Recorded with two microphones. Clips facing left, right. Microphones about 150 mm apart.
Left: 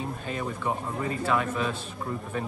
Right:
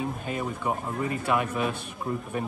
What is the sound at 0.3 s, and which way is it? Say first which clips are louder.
Speech: left 1 dB; 10° right (ahead or behind).